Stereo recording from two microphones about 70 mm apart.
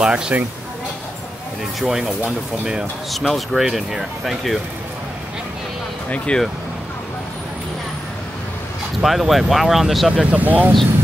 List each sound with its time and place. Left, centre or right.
0.0 s speech: centre
1.8 s speech: centre
3.1 s speech: centre
6.0 s speech: centre
9.0 s speech: centre
10.3 s speech: right